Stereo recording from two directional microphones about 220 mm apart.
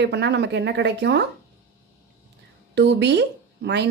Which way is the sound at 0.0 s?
50° right (ahead or behind).